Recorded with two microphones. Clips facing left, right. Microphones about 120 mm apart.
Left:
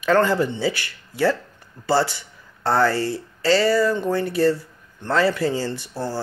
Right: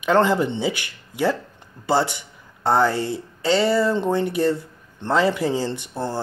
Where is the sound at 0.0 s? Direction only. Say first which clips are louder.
Even; 20° right (ahead or behind).